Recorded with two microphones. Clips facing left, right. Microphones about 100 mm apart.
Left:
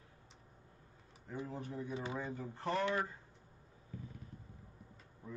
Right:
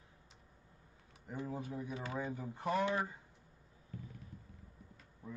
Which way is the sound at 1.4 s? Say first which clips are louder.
Right 2 dB; 10° right (ahead or behind).